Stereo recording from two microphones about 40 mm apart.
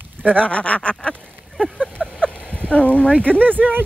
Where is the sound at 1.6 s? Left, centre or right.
Left.